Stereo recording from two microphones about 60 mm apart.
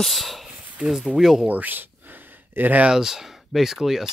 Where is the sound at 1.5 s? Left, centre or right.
Right.